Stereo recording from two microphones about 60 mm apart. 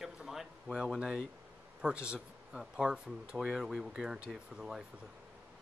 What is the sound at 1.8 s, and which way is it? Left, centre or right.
Speech, centre.